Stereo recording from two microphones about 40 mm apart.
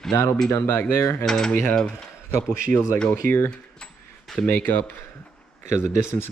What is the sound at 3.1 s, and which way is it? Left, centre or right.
Speech, left.